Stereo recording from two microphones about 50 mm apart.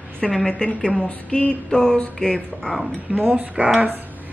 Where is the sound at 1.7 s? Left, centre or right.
Centre.